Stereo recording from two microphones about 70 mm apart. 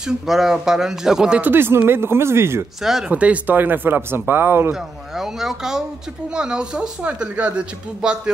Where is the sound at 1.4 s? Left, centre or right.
Right.